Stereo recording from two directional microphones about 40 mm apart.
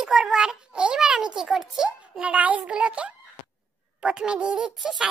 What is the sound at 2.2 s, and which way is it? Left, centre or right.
Speech, right.